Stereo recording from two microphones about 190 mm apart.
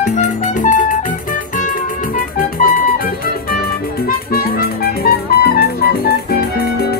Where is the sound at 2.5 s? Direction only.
45° left (ahead or behind).